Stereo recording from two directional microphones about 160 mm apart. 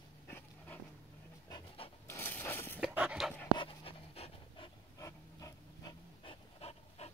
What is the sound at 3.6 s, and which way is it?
Pant, 35° left (ahead or behind).